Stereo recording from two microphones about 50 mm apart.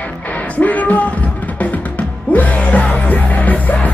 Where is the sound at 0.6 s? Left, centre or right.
Left.